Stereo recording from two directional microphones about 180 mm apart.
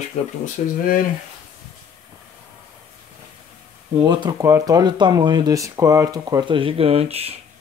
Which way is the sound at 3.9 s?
25° right (ahead or behind).